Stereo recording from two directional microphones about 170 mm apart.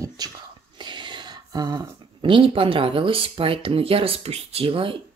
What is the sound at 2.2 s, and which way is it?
Speech, 30° right (ahead or behind).